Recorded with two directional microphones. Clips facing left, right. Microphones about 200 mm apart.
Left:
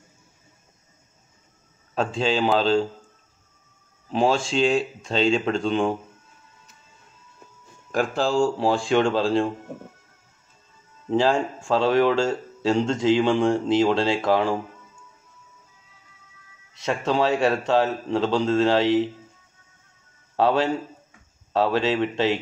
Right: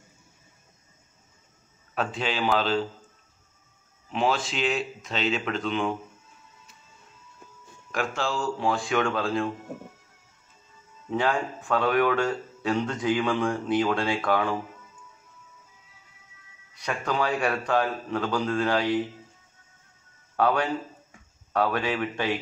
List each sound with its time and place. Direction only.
2.0 s speech: 25° left (ahead or behind)
4.1 s speech: 30° left (ahead or behind)
7.9 s speech: 35° left (ahead or behind)
11.1 s speech: 30° left (ahead or behind)
16.7 s speech: 25° left (ahead or behind)
20.3 s speech: 25° left (ahead or behind)